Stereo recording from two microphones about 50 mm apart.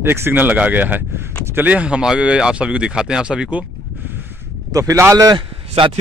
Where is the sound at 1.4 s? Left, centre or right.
Right.